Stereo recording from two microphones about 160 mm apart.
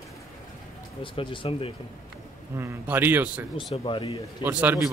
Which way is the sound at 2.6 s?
15° right (ahead or behind).